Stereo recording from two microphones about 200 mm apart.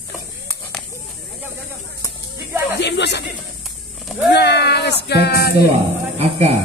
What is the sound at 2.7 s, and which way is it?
Snake, 60° left (ahead or behind).